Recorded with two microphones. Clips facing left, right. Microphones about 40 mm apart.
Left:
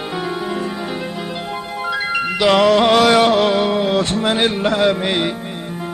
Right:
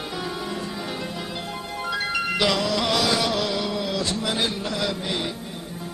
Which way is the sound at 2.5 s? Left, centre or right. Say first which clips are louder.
Left 11 dB; left.